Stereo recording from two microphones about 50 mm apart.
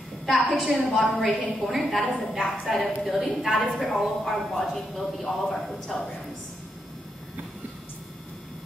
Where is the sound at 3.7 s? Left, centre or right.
Centre.